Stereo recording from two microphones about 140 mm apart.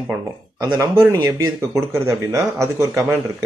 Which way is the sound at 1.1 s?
30° right (ahead or behind).